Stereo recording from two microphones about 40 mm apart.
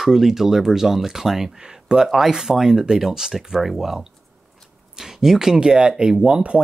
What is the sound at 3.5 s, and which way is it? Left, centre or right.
Speech, centre.